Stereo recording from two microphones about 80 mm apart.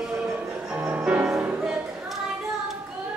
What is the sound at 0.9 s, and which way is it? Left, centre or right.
Music, centre.